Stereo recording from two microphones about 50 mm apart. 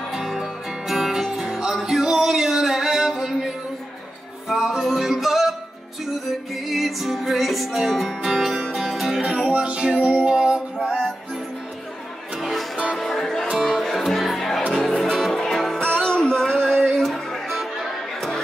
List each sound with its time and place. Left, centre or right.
0.1 s music: centre
4.5 s music: centre
6.5 s music: centre
9.5 s music: right
12.4 s music: centre
13.2 s music: centre